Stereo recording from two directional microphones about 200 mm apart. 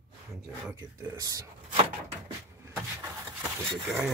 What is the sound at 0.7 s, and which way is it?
Speech, 10° right (ahead or behind).